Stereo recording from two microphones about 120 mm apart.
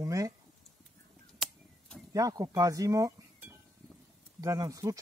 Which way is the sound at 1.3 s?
5° left (ahead or behind).